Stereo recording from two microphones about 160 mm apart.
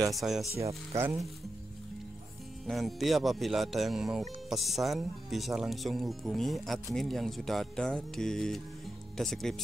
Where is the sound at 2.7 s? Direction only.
Centre (ahead or behind).